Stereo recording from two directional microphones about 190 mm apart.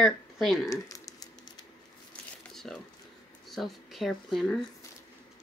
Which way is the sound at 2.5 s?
Centre (ahead or behind).